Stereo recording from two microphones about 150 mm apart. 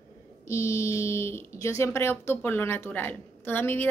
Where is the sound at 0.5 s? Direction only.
20° left (ahead or behind).